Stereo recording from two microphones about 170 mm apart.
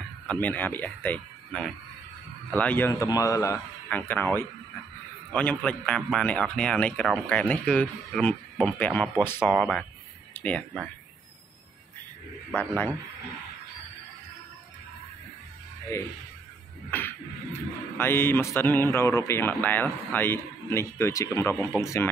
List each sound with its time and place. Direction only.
0.3 s speech: 10° left (ahead or behind)
9.5 s speech: centre (ahead or behind)
12.5 s speech: 10° left (ahead or behind)
15.9 s speech: 15° left (ahead or behind)